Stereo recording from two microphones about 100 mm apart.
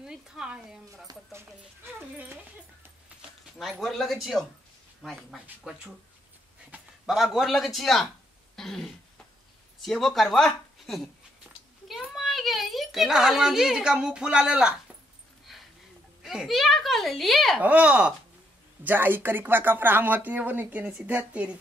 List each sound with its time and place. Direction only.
0.0 s speech: 5° right (ahead or behind)
2.0 s speech: 20° right (ahead or behind)
3.8 s a child's voice: centre (ahead or behind)
7.1 s a child's voice: 5° right (ahead or behind)
15.5 s a sound: centre (ahead or behind)
16.2 s a child's voice: 5° right (ahead or behind)
17.6 s speech: 15° right (ahead or behind)